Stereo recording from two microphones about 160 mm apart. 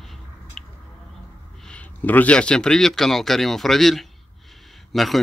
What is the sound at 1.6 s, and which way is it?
Speech, 10° left (ahead or behind).